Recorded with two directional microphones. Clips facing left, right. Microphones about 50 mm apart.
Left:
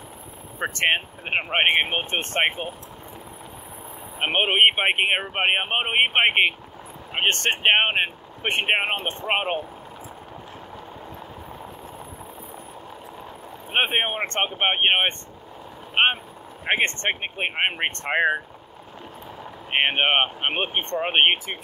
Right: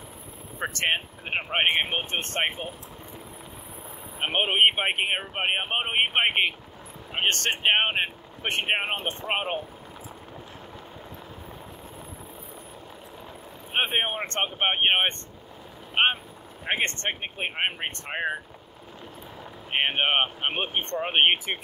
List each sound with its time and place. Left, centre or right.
0.6 s speech: centre
4.3 s speech: left
13.7 s speech: left
17.7 s speech: left
19.7 s speech: left
21.5 s speech: right